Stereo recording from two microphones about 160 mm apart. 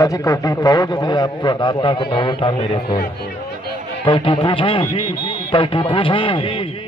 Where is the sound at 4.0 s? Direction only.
30° left (ahead or behind).